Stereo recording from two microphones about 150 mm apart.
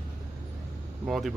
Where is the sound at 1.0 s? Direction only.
Centre (ahead or behind).